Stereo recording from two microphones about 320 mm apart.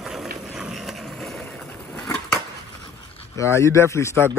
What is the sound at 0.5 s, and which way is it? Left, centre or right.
Vehicle, centre.